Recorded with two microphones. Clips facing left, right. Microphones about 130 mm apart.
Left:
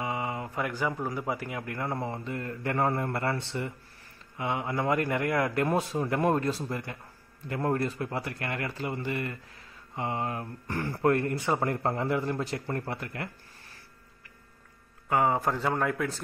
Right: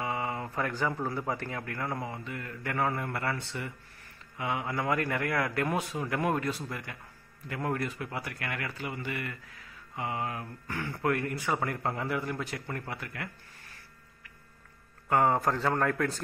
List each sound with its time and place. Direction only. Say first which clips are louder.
0.0 s a man's voice: left 1 dB; 20° left (ahead or behind)
15.0 s a man's voice: even; 5° left (ahead or behind)